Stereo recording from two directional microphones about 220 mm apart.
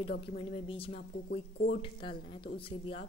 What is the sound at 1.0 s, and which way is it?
Speech, 45° left (ahead or behind).